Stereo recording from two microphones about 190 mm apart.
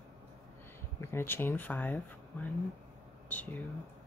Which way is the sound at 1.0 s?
10° left (ahead or behind).